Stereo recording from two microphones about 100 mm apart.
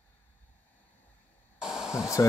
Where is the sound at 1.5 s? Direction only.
5° right (ahead or behind).